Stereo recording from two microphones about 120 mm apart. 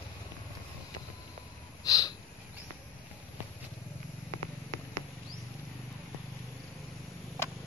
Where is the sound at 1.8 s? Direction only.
30° left (ahead or behind).